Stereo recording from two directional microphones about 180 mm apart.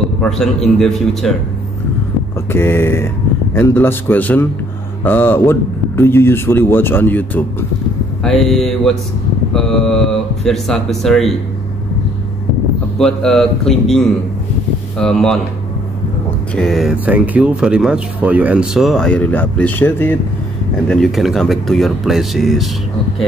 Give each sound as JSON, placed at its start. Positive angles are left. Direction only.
{"t": 0.2, "sound": "speech", "side_deg": 0}
{"t": 2.5, "sound": "a man's voice", "side_deg": 10}
{"t": 13.0, "sound": "speech", "side_deg": 0}
{"t": 16.5, "sound": "speech", "side_deg": 0}